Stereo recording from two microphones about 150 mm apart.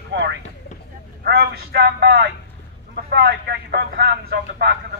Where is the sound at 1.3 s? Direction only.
90° right.